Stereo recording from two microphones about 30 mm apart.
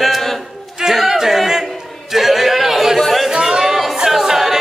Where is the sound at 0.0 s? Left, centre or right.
Centre.